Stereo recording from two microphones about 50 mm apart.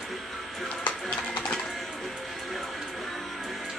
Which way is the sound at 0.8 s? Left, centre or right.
Left.